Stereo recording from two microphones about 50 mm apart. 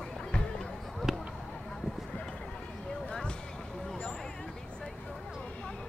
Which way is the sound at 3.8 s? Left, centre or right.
Centre.